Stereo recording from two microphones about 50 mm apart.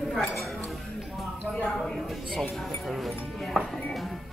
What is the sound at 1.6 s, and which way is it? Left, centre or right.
Speech, centre.